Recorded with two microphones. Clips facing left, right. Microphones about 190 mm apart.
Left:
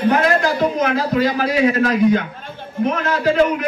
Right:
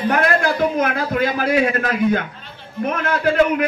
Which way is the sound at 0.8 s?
55° right (ahead or behind).